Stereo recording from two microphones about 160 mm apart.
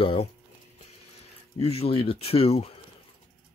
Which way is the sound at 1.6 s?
40° left (ahead or behind).